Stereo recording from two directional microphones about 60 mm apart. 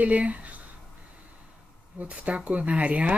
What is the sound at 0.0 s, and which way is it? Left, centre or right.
Speech, right.